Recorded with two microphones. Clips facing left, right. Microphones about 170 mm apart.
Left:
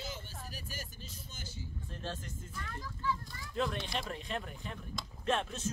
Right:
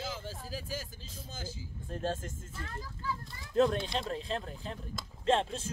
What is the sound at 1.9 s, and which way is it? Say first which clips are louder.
Vehicle: right 9 dB; 45° right (ahead or behind).